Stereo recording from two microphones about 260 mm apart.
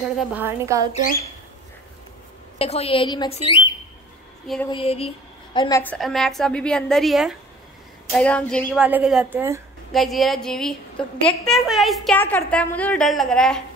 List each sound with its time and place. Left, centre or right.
0.2 s a woman's voice: centre
2.6 s a woman's voice: left
4.6 s a woman's voice: left; by 13.6 s centre